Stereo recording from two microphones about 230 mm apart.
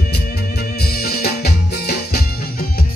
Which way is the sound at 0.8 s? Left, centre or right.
Left.